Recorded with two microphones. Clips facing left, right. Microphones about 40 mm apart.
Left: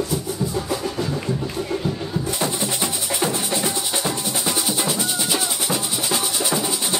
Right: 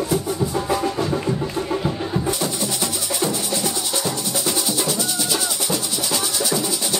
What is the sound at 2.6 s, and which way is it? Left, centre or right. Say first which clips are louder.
Music: even; left.